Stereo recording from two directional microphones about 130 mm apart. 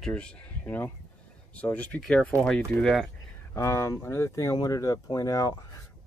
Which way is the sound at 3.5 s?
20° left (ahead or behind).